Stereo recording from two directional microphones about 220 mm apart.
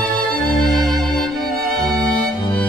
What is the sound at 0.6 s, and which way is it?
Music, centre (ahead or behind).